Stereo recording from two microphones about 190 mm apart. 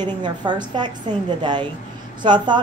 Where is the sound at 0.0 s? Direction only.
25° right (ahead or behind).